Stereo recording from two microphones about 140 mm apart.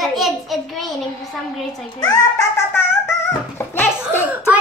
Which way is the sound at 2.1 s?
15° left (ahead or behind).